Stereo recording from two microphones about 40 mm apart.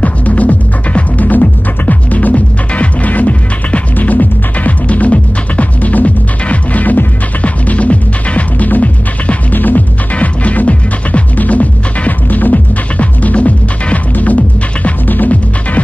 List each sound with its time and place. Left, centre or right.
0.0 s music: left
10.1 s music: left
12.9 s music: left